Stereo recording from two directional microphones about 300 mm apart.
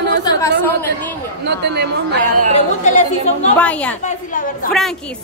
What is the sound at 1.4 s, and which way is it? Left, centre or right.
Speech, right.